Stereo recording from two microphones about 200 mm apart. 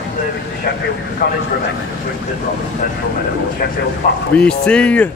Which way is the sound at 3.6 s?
50° left (ahead or behind).